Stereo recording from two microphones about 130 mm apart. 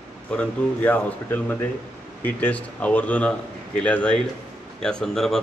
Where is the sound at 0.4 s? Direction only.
10° left (ahead or behind).